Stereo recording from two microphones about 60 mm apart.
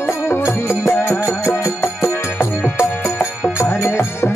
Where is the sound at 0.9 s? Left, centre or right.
Left.